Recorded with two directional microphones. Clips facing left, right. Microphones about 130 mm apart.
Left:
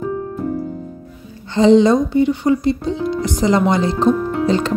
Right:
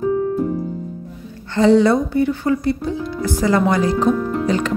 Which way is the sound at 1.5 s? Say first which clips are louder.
Left 2 dB; 20° left (ahead or behind).